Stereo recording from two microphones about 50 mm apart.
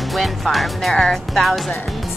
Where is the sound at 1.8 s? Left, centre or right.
Centre.